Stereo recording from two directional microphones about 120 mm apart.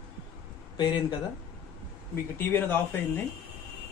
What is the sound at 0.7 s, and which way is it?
Speech, 40° left (ahead or behind).